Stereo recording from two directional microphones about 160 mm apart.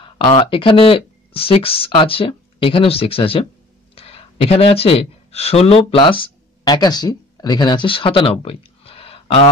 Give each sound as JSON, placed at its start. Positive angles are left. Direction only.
{"t": 0.0, "sound": "speech", "side_deg": 35}